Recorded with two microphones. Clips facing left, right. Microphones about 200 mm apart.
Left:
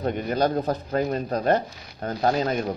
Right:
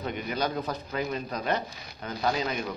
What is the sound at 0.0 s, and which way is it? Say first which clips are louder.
Speech: left 7 dB; 45° left (ahead or behind).